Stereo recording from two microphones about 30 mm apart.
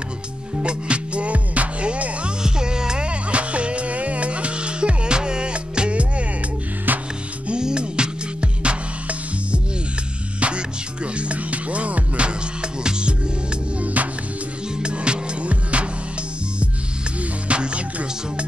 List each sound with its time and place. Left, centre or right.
0.7 s music: right
2.4 s music: right
3.1 s music: right
6.9 s music: right
7.5 s music: right
10.4 s music: right
13.7 s music: right
14.8 s music: right
15.4 s music: right
17.5 s music: right